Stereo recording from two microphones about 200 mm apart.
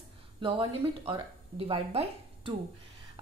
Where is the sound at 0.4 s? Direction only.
25° right (ahead or behind).